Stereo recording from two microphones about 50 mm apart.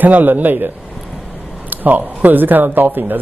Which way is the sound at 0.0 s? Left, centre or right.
Right.